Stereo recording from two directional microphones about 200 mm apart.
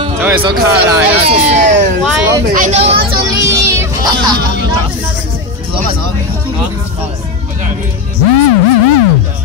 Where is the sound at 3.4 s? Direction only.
15° right (ahead or behind).